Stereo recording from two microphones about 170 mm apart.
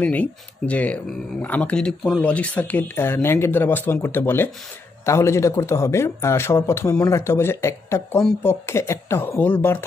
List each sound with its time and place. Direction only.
0.0 s speech: 10° left (ahead or behind)